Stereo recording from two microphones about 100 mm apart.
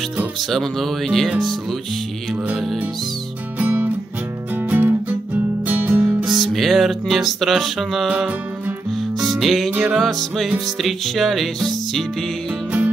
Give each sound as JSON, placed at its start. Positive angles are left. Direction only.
{"t": 0.4, "sound": "music", "side_deg": 0}
{"t": 2.3, "sound": "music", "side_deg": -15}
{"t": 6.0, "sound": "music", "side_deg": 0}
{"t": 8.1, "sound": "music", "side_deg": -15}
{"t": 9.3, "sound": "music", "side_deg": 0}
{"t": 9.7, "sound": "music", "side_deg": -10}
{"t": 9.9, "sound": "music", "side_deg": 0}